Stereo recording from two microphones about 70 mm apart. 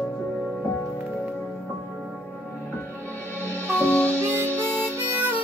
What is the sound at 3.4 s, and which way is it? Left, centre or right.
Music, left.